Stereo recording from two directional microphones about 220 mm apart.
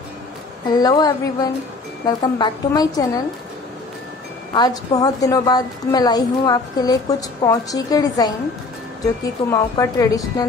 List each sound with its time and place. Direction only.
0.7 s a woman's voice: 20° left (ahead or behind)
4.6 s a woman's voice: 15° left (ahead or behind)